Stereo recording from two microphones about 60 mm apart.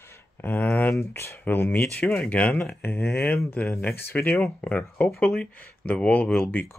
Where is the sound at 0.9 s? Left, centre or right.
Left.